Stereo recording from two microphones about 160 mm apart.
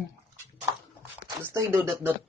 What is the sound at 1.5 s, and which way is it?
Speech, 15° right (ahead or behind).